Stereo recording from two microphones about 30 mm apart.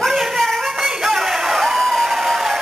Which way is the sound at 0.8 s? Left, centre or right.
Centre.